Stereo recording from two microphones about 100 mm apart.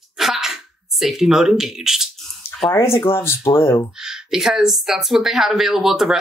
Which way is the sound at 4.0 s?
5° right (ahead or behind).